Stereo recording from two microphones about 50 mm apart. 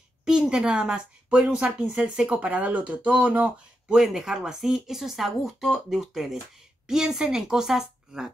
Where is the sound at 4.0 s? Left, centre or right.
Centre.